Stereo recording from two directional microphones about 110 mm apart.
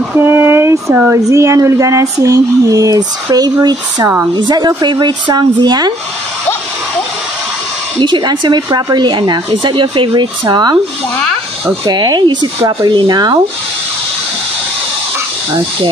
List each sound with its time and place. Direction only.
0.1 s a sound: 20° right (ahead or behind)
1.1 s speech: 30° right (ahead or behind)
8.0 s speech: 40° right (ahead or behind)
11.8 s speech: 40° right (ahead or behind)